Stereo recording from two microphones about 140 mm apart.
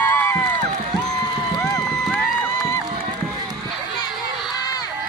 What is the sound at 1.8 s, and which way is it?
Music, 5° left (ahead or behind).